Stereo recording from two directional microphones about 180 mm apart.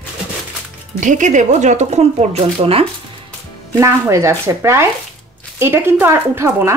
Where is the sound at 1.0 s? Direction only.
45° right (ahead or behind).